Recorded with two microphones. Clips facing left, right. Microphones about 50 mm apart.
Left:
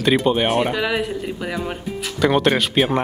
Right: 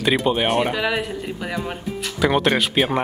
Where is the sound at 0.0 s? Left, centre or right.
Centre.